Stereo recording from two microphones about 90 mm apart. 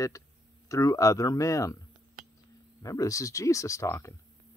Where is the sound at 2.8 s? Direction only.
40° left (ahead or behind).